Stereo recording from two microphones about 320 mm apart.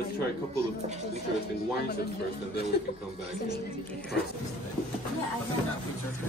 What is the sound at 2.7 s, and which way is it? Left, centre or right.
Speech, left.